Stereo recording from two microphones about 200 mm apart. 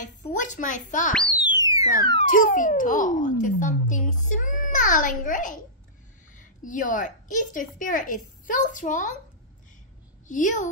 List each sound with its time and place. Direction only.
0.0 s a sound: 40° left (ahead or behind)
1.6 s music: 15° right (ahead or behind)
2.1 s a woman's voice: 40° left (ahead or behind)
10.2 s a woman's voice: 40° left (ahead or behind)